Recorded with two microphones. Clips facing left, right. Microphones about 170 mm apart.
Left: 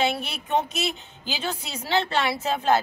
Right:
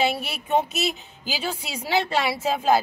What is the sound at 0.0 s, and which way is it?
A woman's voice, 5° right (ahead or behind).